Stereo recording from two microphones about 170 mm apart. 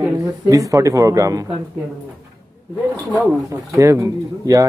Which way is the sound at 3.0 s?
5° right (ahead or behind).